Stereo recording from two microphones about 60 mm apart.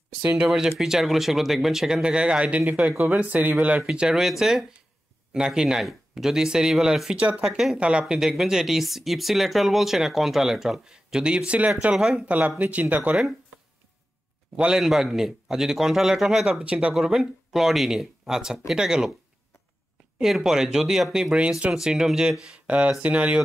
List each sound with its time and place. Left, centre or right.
0.2 s speech: right
0.5 s speech: centre; by 3.5 s right
3.8 s speech: centre
7.2 s speech: right
7.4 s speech: centre
12.4 s speech: right
14.8 s speech: centre
16.6 s speech: centre
16.9 s speech: centre
20.2 s speech: centre
21.7 s speech: centre